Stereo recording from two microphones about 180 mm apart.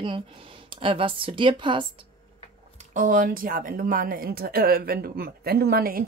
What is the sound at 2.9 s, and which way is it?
Speech, 45° right (ahead or behind).